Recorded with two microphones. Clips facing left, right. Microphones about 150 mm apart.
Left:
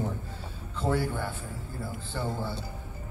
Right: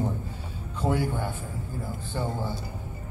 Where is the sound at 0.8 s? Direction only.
15° right (ahead or behind).